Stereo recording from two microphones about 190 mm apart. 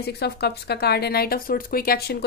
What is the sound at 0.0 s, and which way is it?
Speech, 60° left (ahead or behind).